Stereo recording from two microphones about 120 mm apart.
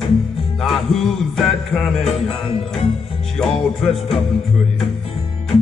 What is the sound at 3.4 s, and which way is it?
Music, 5° left (ahead or behind).